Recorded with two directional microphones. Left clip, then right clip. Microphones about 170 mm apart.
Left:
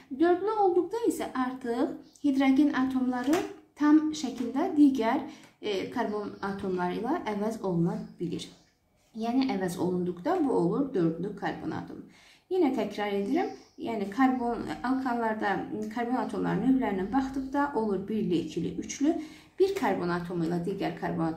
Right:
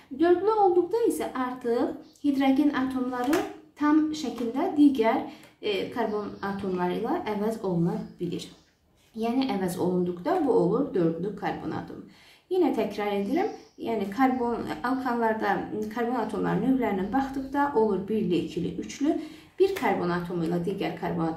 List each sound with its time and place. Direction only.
1.0 s speech: 20° left (ahead or behind)
9.2 s a woman's voice: 20° left (ahead or behind)